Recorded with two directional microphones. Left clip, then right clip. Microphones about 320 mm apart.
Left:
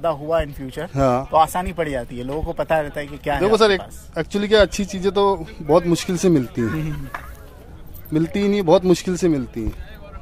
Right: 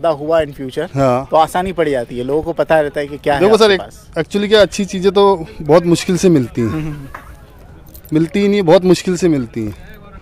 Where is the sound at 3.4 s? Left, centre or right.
Centre.